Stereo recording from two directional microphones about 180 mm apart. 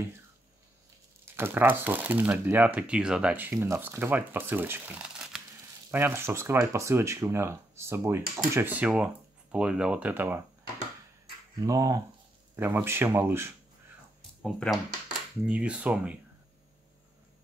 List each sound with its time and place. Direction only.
1.2 s speech: 10° right (ahead or behind)
11.6 s speech: 20° right (ahead or behind)
14.4 s speech: centre (ahead or behind)